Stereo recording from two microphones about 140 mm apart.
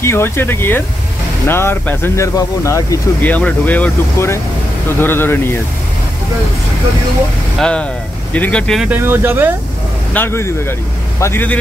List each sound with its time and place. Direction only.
0.0 s speech: 15° left (ahead or behind)
7.5 s speech: 5° left (ahead or behind)
8.8 s speech: 15° right (ahead or behind)
10.1 s speech: 15° left (ahead or behind)